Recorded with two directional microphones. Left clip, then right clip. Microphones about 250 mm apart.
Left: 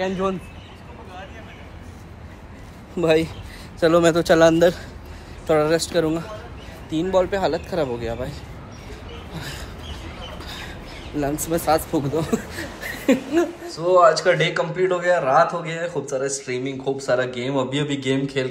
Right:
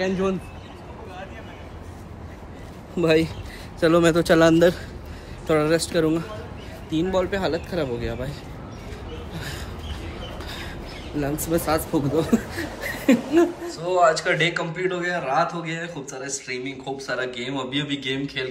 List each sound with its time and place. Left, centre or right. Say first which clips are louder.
0.0 s a man's voice: left 1 dB; centre
3.0 s speech: left 1 dB; centre
9.3 s a sound: left 2 dB; centre
11.4 s speech: left 3 dB; centre
13.7 s a man's voice: left 4 dB; left